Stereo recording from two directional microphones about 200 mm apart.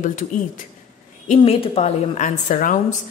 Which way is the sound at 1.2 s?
30° left (ahead or behind).